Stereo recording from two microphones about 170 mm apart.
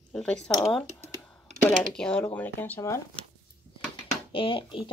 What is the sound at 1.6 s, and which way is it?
Speech, 5° left (ahead or behind).